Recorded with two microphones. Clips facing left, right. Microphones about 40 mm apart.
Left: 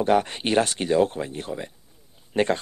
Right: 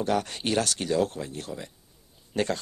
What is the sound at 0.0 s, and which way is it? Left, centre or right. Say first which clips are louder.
Speech: left 6 dB; left.